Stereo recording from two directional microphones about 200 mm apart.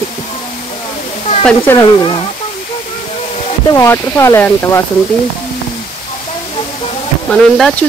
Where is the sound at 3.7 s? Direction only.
15° left (ahead or behind).